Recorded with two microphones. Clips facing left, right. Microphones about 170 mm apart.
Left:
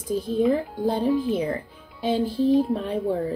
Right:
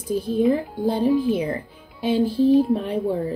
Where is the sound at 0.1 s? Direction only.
10° right (ahead or behind).